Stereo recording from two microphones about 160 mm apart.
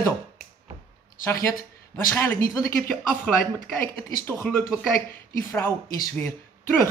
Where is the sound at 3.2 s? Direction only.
Centre (ahead or behind).